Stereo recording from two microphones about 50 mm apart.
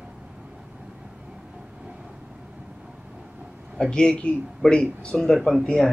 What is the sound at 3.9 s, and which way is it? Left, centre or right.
Speech, centre.